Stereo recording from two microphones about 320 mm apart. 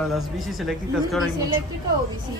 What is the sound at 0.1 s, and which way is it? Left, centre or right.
Speech, centre.